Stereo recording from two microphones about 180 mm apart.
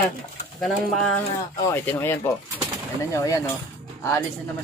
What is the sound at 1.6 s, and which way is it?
Speech, 15° left (ahead or behind).